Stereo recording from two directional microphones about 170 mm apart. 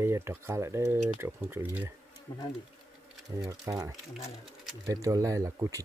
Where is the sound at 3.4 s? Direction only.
20° right (ahead or behind).